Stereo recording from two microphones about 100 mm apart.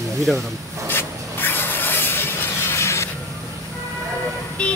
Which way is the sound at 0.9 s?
20° left (ahead or behind).